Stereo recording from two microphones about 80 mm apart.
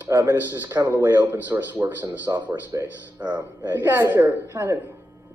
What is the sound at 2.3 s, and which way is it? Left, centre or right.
Speech, right.